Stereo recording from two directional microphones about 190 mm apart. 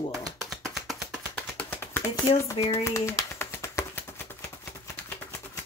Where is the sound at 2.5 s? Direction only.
30° left (ahead or behind).